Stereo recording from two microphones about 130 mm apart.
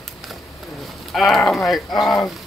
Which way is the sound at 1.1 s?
Centre (ahead or behind).